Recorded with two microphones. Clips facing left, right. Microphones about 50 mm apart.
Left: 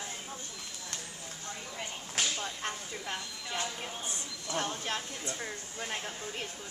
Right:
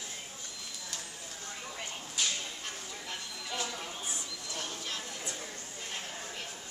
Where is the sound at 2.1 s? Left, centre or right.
Left.